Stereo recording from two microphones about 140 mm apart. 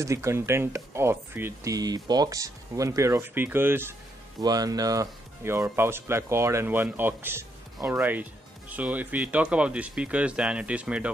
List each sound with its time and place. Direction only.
0.0 s speech: 20° right (ahead or behind)
4.4 s speech: 25° right (ahead or behind); by 11.1 s 10° right (ahead or behind)